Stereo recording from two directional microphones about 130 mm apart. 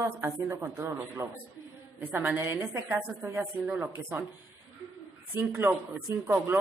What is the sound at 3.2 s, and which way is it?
Speech, 10° right (ahead or behind).